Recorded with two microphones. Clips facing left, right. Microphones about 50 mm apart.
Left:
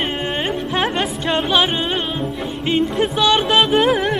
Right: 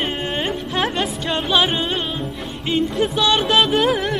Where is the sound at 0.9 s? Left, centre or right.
Centre.